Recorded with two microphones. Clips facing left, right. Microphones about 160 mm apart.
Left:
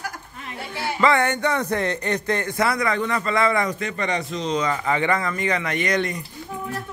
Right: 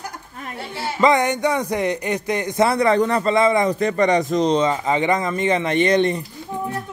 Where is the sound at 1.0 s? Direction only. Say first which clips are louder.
Right 3 dB; 15° right (ahead or behind).